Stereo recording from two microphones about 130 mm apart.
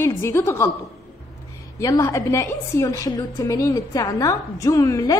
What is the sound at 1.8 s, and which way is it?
A woman's voice, 25° left (ahead or behind).